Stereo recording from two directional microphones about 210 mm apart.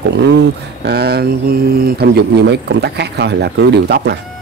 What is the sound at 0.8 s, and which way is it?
A man's voice, 50° right (ahead or behind).